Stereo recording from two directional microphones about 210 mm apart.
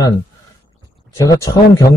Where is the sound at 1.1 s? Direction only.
15° left (ahead or behind).